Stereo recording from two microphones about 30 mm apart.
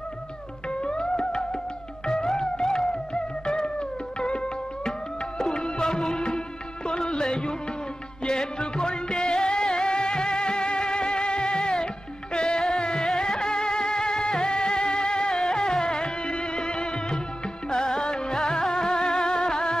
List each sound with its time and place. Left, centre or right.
0.8 s music: left